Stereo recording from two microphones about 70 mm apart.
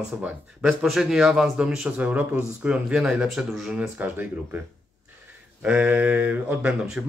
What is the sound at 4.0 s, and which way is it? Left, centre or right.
Speech, right.